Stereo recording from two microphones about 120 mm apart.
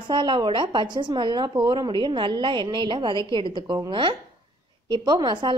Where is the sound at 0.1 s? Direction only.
40° right (ahead or behind).